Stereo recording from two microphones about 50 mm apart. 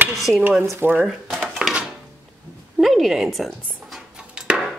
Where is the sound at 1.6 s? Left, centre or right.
Centre.